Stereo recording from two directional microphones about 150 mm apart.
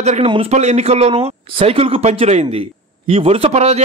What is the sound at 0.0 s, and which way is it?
A man's voice, 50° right (ahead or behind).